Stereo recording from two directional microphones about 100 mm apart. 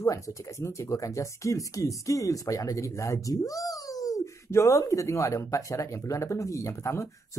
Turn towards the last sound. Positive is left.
turn(degrees=30)  # may be behind; listen again after turning